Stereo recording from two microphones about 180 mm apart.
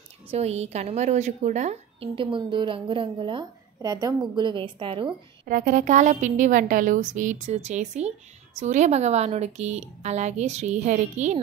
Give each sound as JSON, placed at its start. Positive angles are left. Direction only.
{"t": 0.3, "sound": "a woman's voice", "side_deg": -35}
{"t": 5.4, "sound": "a woman's voice", "side_deg": -50}